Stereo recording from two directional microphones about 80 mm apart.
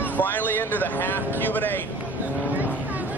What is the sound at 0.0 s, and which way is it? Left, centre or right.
A man's voice, left.